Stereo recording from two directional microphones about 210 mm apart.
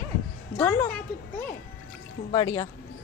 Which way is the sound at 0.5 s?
10° left (ahead or behind).